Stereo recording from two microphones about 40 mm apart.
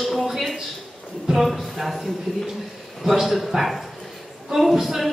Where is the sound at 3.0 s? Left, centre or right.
Centre.